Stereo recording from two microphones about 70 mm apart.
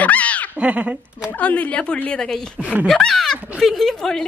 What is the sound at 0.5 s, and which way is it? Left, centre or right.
Speech, right.